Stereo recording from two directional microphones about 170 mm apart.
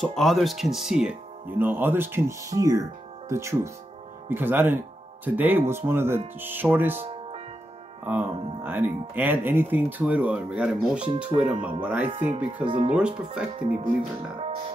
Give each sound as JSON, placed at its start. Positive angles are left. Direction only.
{"t": 0.0, "sound": "speech", "side_deg": 0}
{"t": 7.1, "sound": "music", "side_deg": -35}
{"t": 8.0, "sound": "speech", "side_deg": -10}
{"t": 12.6, "sound": "speech", "side_deg": -40}
{"t": 12.9, "sound": "speech", "side_deg": -5}
{"t": 13.6, "sound": "speech", "side_deg": -45}